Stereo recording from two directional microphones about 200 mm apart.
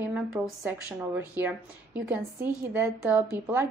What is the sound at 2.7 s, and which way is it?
Speech, 10° right (ahead or behind).